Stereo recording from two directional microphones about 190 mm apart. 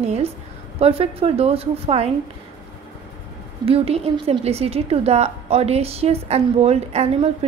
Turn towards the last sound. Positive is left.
turn(degrees=-35)  # may be behind; listen again after turning